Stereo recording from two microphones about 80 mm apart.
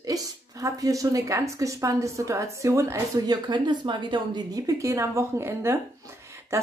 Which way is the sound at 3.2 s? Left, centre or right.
Right.